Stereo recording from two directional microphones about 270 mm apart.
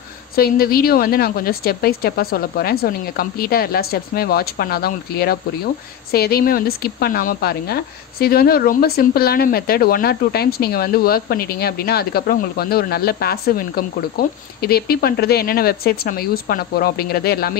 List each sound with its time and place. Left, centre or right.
0.4 s speech: left